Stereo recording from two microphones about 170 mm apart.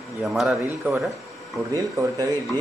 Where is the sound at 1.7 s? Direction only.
20° right (ahead or behind).